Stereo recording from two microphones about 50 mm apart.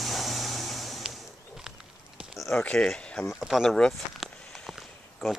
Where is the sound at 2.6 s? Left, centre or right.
Left.